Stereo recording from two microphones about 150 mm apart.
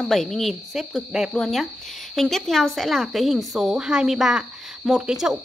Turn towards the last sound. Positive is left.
turn(degrees=-5)  # may be behind; listen again after turning